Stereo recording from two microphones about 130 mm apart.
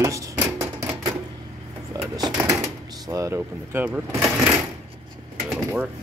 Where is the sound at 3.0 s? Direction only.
25° right (ahead or behind).